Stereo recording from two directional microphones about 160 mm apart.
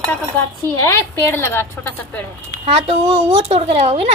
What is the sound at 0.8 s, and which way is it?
A woman's voice, 15° left (ahead or behind).